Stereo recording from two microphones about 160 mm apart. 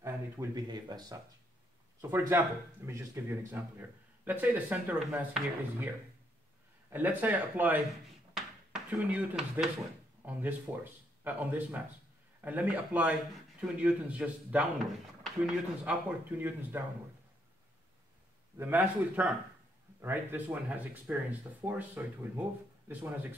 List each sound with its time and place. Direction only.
0.0 s speech: 20° right (ahead or behind)
6.9 s speech: 10° right (ahead or behind)
8.4 s a sound: 5° right (ahead or behind)
10.2 s speech: 10° right (ahead or behind)
18.6 s speech: 10° right (ahead or behind)